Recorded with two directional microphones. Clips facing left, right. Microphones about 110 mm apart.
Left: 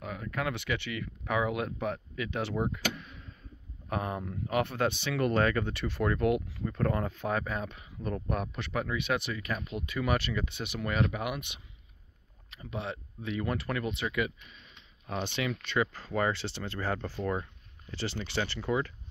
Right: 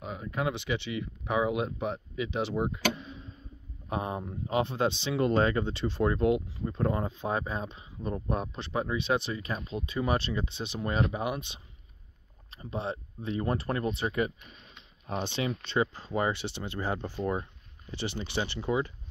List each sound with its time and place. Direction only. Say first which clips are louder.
0.0 s speech: right 2 dB; 20° right (ahead or behind)